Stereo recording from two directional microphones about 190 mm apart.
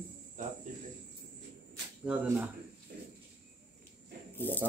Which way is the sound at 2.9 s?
50° right (ahead or behind).